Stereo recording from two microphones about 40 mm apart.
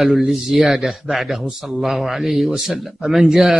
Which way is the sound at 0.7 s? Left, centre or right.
Centre.